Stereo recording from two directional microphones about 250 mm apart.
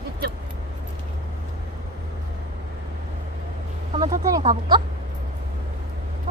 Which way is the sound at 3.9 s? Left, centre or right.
Centre.